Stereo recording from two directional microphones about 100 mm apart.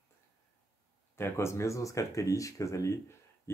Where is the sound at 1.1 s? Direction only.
25° left (ahead or behind).